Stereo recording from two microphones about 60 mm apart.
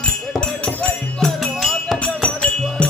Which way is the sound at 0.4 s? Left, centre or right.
Left.